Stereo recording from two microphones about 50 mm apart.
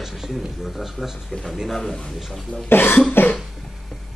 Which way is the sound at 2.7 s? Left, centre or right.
Left.